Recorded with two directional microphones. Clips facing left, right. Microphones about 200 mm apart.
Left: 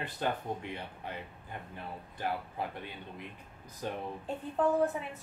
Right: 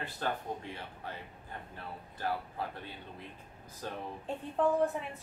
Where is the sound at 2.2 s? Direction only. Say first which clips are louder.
Even; 15° left (ahead or behind).